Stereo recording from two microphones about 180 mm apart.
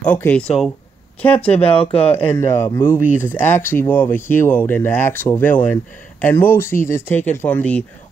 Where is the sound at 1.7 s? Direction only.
30° left (ahead or behind).